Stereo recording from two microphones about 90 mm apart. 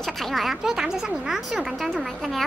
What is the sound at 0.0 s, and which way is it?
A woman's voice, centre (ahead or behind).